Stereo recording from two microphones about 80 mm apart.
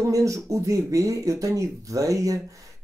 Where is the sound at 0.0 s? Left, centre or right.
Right.